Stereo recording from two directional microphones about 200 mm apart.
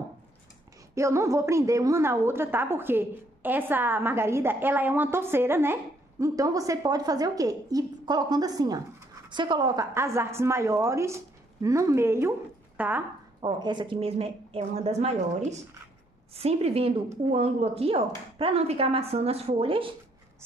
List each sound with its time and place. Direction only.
0.9 s a woman's voice: 15° right (ahead or behind)
13.4 s a woman's voice: 25° right (ahead or behind)
16.3 s a woman's voice: 30° right (ahead or behind)